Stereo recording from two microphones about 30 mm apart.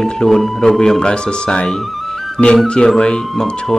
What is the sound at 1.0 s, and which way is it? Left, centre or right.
Speech, left.